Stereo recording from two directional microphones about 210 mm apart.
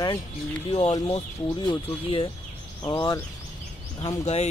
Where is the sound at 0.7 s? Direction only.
25° left (ahead or behind).